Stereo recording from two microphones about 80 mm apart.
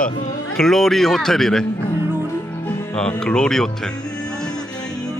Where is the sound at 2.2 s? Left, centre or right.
Left.